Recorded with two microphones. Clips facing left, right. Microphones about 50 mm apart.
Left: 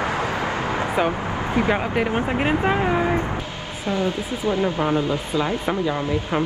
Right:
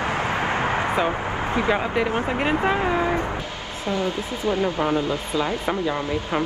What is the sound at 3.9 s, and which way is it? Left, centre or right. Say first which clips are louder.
Speech: left 2 dB; left.